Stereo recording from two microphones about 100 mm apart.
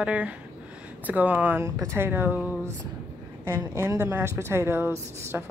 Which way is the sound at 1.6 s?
30° right (ahead or behind).